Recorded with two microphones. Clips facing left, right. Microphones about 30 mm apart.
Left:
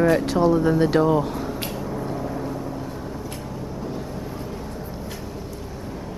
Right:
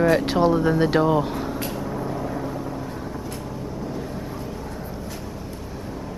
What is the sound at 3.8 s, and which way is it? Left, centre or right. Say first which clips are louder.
Vehicle: even; centre.